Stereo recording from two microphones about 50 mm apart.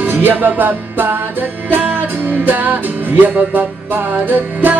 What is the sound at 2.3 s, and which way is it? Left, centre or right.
Music, right.